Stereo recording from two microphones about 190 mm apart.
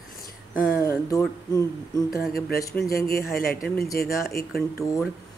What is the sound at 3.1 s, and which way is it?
Speech, 50° left (ahead or behind).